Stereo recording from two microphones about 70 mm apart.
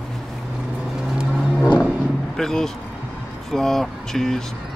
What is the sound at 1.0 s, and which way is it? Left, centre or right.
Vehicle, centre.